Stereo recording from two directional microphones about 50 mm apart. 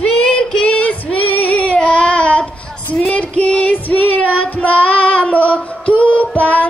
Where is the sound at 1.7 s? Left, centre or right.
Left.